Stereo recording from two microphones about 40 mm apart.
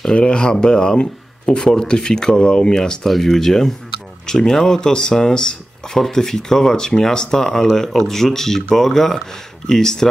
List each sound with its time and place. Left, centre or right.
0.1 s speech: left
5.9 s speech: centre